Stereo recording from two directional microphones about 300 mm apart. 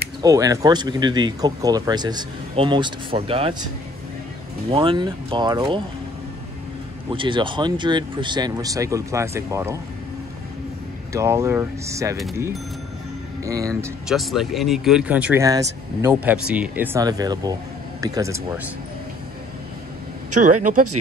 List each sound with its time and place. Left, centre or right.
0.2 s speech: centre
4.6 s speech: centre
7.1 s speech: centre
11.1 s speech: centre
20.3 s speech: right